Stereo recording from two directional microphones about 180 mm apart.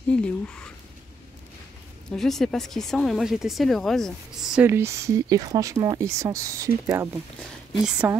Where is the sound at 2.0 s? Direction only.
Centre (ahead or behind).